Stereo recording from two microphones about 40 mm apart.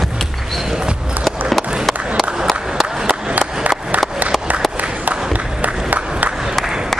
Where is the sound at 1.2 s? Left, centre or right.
Centre.